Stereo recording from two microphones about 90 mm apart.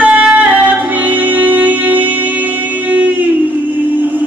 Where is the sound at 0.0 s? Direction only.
10° right (ahead or behind).